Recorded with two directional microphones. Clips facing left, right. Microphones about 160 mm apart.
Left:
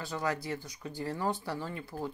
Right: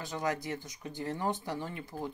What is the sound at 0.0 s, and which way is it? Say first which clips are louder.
Speech: even; 20° right (ahead or behind).